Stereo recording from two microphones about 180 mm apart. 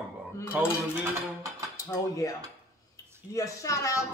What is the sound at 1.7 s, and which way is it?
Cutlery, 15° left (ahead or behind).